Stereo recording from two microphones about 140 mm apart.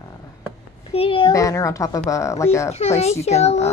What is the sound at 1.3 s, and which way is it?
Speech, 25° left (ahead or behind).